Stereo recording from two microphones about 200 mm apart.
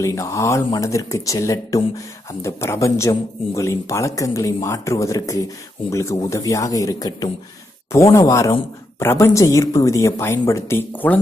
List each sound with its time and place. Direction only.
0.0 s speech: 15° left (ahead or behind)